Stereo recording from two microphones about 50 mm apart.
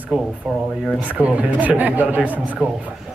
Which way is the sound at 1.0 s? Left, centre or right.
Right.